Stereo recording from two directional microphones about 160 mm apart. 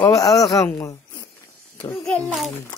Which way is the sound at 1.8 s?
5° left (ahead or behind).